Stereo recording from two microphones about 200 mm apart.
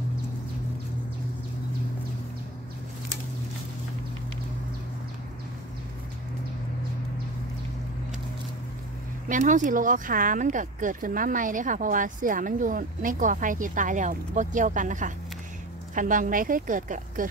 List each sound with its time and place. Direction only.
9.3 s speech: 40° right (ahead or behind)